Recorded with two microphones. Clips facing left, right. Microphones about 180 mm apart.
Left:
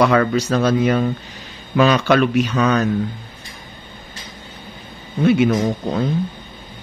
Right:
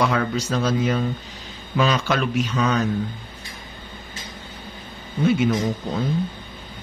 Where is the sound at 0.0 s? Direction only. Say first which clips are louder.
Left 6 dB; 65° left (ahead or behind).